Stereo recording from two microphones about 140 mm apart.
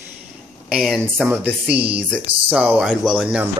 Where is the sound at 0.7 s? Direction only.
Centre (ahead or behind).